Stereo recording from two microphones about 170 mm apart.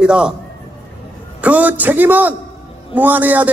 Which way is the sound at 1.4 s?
10° right (ahead or behind).